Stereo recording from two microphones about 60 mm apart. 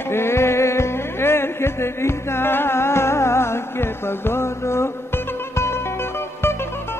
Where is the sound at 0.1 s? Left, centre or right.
Left.